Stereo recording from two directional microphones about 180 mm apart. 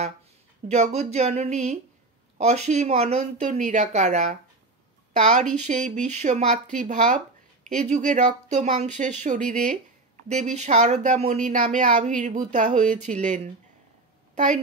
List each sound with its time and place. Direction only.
0.7 s a woman's voice: 40° right (ahead or behind)